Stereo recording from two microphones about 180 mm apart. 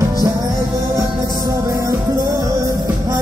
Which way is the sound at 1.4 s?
15° right (ahead or behind).